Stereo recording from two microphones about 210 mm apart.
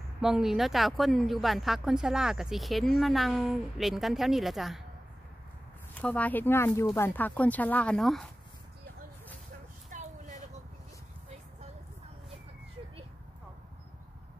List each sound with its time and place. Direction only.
0.2 s speech: centre (ahead or behind)
5.9 s speech: 5° left (ahead or behind)
9.8 s a sound: 35° right (ahead or behind)